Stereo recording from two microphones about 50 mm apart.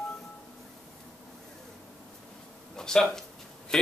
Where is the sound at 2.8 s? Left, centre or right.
Centre.